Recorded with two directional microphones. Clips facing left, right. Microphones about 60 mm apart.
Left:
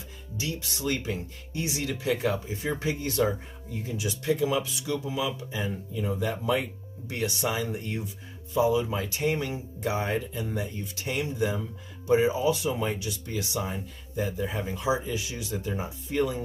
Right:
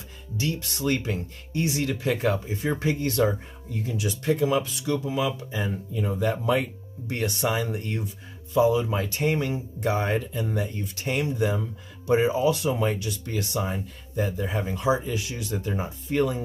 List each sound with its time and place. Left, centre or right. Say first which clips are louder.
0.4 s speech: right 4 dB; right